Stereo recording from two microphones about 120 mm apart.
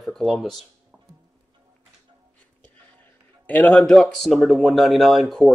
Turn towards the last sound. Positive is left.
turn(degrees=0)  # may be behind; listen again after turning